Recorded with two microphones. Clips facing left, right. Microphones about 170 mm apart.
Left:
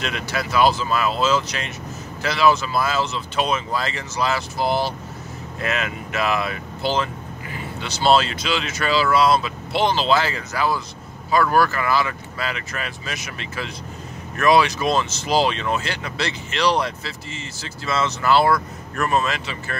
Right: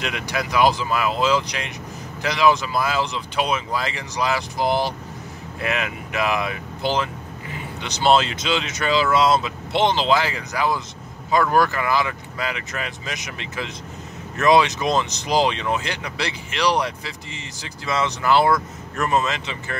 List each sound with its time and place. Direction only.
0.0 s speech: 15° right (ahead or behind)